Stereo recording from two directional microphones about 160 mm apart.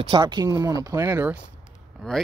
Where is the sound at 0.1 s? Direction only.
25° right (ahead or behind).